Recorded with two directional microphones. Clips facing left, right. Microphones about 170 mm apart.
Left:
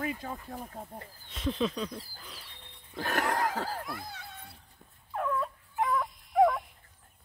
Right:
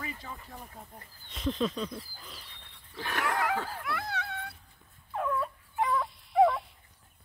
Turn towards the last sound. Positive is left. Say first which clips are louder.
# even
turn(degrees=0)  # may be behind; listen again after turning